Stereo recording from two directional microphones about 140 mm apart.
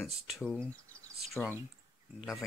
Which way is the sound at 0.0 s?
Centre (ahead or behind).